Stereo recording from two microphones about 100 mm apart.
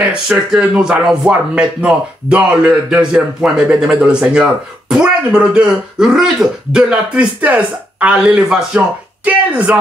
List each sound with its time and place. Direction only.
0.1 s speech: 10° right (ahead or behind)